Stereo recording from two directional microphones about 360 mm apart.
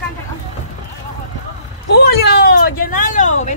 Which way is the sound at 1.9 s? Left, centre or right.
Left.